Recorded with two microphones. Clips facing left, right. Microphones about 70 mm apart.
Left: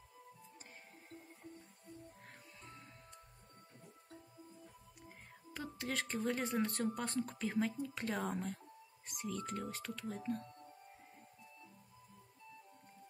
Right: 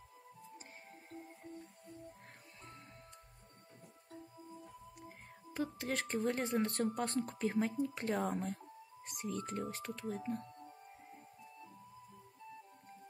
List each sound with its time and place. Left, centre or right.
5.5 s speech: right